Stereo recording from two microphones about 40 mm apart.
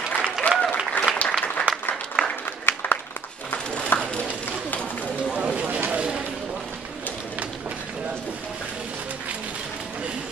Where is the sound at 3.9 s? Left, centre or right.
Left.